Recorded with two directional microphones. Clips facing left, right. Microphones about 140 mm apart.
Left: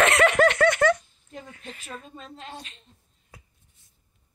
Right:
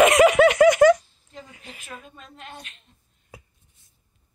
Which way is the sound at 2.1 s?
30° left (ahead or behind).